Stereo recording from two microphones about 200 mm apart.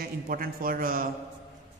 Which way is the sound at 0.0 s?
45° right (ahead or behind).